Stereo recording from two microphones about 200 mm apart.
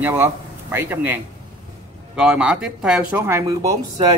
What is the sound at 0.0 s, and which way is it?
A man's voice, 10° right (ahead or behind).